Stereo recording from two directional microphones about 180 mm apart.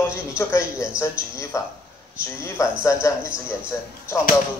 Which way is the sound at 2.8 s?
15° left (ahead or behind).